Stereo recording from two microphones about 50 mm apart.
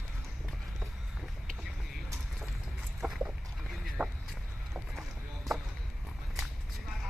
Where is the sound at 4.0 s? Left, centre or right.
Right.